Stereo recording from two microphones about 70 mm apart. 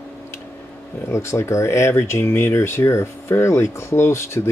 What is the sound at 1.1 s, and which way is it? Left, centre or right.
Speech, left.